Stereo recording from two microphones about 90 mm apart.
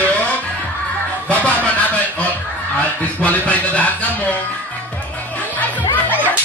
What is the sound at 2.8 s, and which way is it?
Music, 15° left (ahead or behind).